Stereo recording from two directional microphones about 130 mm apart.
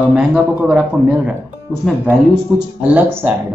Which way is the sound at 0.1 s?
10° right (ahead or behind).